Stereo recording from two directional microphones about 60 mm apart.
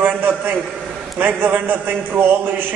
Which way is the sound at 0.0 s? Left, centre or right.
Right.